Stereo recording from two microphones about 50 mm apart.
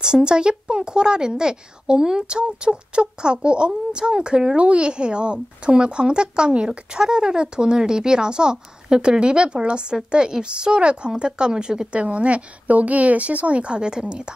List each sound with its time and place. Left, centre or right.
0.0 s a woman's voice: centre